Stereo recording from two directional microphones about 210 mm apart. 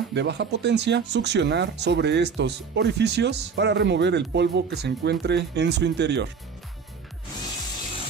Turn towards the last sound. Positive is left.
turn(degrees=-55)  # may be behind; listen again after turning